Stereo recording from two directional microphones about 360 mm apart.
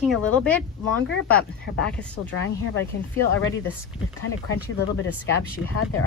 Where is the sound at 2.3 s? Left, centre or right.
Left.